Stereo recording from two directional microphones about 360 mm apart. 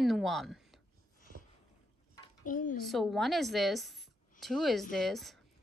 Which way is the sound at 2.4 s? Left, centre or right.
Left.